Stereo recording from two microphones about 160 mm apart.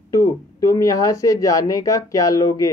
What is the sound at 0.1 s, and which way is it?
Speech, 20° left (ahead or behind).